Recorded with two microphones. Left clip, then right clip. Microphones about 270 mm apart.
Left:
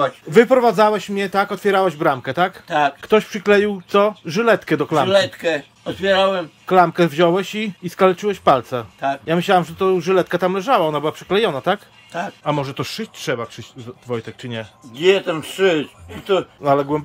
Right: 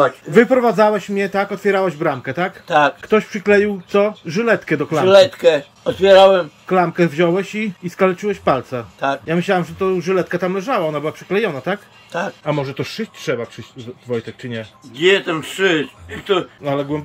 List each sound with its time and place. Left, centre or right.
0.0 s speech: centre
2.7 s speech: centre
3.1 s speech: centre
6.1 s speech: centre
6.7 s speech: centre
12.1 s speech: centre
15.0 s speech: left
16.6 s speech: centre